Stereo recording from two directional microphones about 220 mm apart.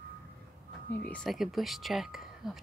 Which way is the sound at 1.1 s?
5° left (ahead or behind).